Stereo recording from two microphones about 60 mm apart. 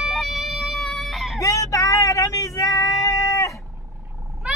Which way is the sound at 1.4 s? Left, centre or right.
Left.